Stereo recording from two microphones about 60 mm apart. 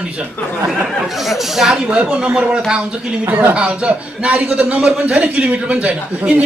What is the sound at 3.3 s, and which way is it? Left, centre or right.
Speech, right.